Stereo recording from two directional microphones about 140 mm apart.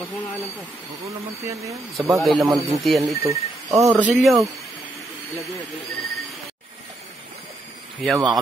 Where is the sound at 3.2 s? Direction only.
20° right (ahead or behind).